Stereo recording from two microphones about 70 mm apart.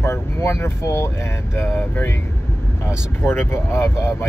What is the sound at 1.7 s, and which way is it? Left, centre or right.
Speech, left.